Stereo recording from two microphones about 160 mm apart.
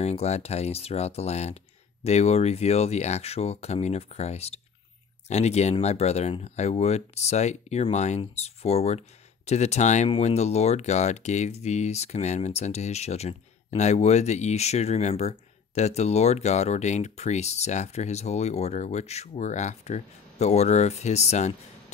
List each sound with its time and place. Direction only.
0.0 s speech: 40° left (ahead or behind)